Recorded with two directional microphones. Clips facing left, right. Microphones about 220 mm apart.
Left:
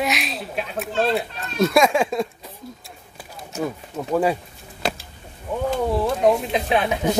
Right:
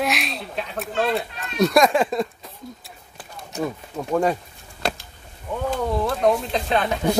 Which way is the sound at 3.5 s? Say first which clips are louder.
Even; 5° left (ahead or behind).